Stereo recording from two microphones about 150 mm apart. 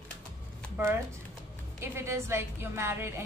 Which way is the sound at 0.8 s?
15° right (ahead or behind).